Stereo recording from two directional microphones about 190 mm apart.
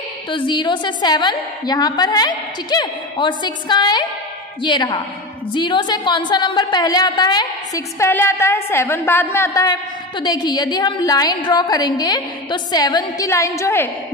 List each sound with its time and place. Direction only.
0.3 s a woman's voice: 25° left (ahead or behind)